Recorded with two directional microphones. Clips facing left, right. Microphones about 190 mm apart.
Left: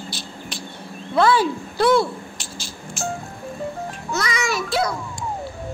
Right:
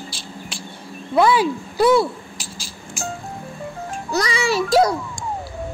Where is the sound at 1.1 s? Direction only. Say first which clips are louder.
Right 1 dB; 10° right (ahead or behind).